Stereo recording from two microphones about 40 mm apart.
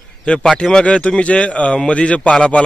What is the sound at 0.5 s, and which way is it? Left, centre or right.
Speech, centre.